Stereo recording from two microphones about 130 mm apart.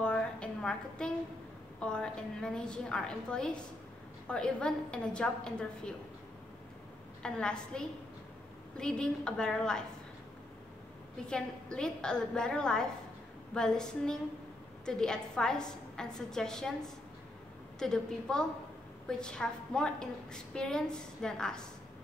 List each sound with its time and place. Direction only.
0.0 s a sound: 10° left (ahead or behind)
1.8 s a woman's voice: 5° left (ahead or behind)
7.2 s a woman's voice: 5° left (ahead or behind)
11.2 s a woman's voice: 5° left (ahead or behind)
17.7 s a woman's voice: 5° left (ahead or behind)